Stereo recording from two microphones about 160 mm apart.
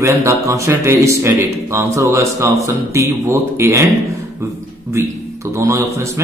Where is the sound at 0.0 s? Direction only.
15° right (ahead or behind).